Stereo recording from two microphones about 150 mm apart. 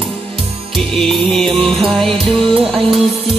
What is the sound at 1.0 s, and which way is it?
Music, centre (ahead or behind).